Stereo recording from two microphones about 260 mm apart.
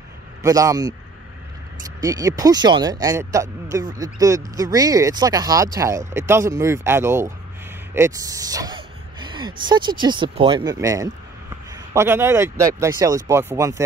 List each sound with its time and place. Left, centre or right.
0.4 s speech: centre
2.0 s speech: centre
7.9 s a sound: centre
9.7 s speech: centre